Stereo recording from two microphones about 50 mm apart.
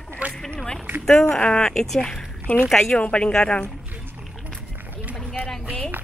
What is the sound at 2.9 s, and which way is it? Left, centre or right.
Speech, left.